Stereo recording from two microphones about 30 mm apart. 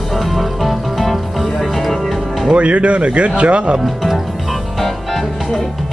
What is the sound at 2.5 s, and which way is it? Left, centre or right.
Speech, right.